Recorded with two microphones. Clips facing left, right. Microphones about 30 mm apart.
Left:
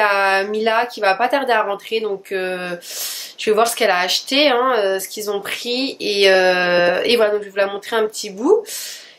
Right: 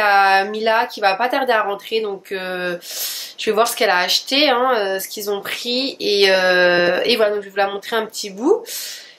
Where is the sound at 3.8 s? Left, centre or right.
Centre.